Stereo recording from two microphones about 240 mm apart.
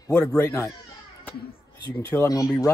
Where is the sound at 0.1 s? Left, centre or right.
Centre.